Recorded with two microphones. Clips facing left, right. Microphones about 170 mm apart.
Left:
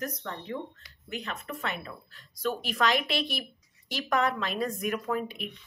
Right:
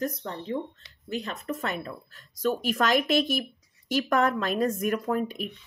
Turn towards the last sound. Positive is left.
turn(degrees=-45)  # may be behind; listen again after turning